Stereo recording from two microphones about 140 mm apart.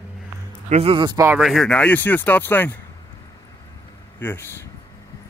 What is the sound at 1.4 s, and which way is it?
Speech, centre (ahead or behind).